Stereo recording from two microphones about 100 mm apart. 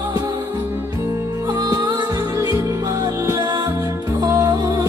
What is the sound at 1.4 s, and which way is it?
Music, 40° right (ahead or behind).